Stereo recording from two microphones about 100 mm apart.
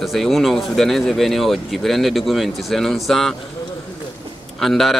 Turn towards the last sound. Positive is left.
turn(degrees=0)  # may be behind; listen again after turning